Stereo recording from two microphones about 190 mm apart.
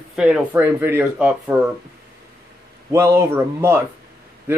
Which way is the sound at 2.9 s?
15° right (ahead or behind).